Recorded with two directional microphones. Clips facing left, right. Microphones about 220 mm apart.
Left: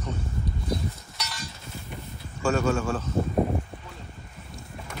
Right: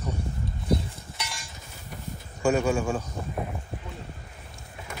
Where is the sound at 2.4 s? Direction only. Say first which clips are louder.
Right 1 dB; 15° right (ahead or behind).